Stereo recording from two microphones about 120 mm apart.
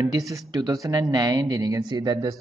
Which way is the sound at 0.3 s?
30° right (ahead or behind).